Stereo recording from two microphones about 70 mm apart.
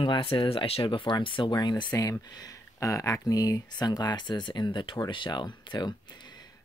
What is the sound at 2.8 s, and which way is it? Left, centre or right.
Speech, left.